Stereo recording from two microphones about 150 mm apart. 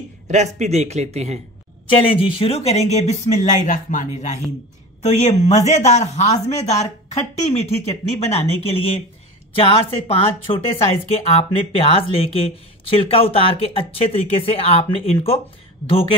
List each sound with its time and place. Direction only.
0.3 s speech: 50° right (ahead or behind)
1.9 s speech: 35° left (ahead or behind)